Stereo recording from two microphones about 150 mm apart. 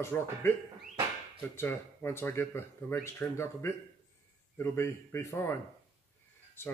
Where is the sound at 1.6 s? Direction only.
15° left (ahead or behind).